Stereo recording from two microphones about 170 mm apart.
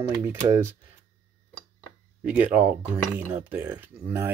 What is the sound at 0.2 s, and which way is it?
Speech, 15° right (ahead or behind).